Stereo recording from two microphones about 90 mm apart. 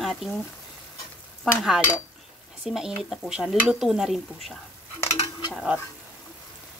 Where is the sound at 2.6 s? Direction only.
5° right (ahead or behind).